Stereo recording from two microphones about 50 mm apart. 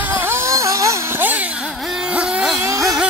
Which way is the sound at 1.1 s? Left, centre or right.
Right.